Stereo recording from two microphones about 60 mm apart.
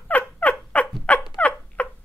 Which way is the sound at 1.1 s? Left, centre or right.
Left.